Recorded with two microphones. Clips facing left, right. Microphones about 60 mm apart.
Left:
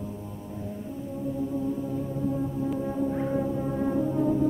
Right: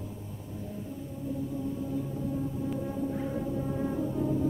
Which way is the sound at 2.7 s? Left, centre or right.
Left.